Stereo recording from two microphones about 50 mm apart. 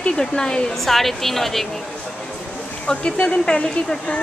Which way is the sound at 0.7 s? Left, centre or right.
Centre.